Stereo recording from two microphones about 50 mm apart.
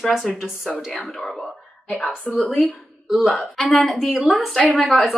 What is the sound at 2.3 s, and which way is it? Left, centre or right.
Speech, left.